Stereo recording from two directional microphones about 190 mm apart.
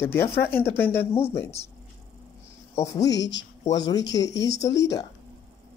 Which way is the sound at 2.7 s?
15° left (ahead or behind).